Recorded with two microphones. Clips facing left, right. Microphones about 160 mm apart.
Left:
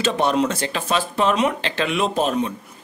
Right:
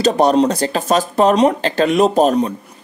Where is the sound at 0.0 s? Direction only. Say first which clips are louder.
Right 7 dB; 40° right (ahead or behind).